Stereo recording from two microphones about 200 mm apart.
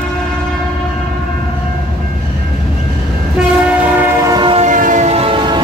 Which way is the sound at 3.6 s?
10° right (ahead or behind).